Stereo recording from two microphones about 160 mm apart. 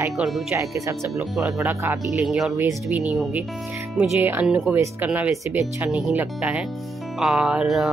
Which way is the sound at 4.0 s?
10° right (ahead or behind).